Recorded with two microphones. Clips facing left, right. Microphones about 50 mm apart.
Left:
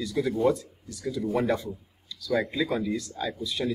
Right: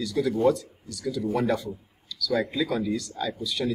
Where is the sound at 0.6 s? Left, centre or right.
Right.